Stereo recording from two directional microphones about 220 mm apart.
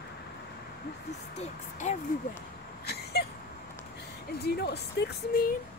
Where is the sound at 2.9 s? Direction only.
45° left (ahead or behind).